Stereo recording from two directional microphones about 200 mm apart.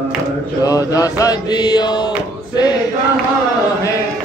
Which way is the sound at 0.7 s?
15° left (ahead or behind).